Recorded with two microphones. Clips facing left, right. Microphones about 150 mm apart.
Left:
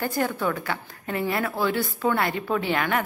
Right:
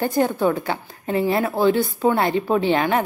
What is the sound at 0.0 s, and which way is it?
A woman's voice, 25° right (ahead or behind).